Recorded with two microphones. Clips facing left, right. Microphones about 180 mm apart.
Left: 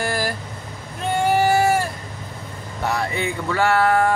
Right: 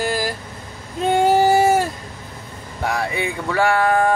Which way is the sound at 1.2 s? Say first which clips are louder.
Right 2 dB; 15° right (ahead or behind).